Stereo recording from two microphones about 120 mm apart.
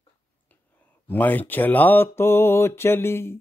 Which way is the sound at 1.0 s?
15° left (ahead or behind).